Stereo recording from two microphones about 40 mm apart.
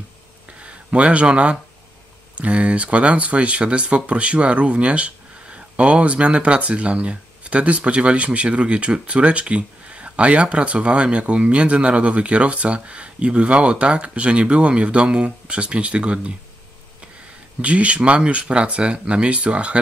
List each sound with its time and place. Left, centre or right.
0.5 s a sound: right
2.3 s speech: right
17.6 s speech: right